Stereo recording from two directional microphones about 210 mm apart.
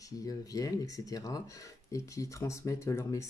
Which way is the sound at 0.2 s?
15° left (ahead or behind).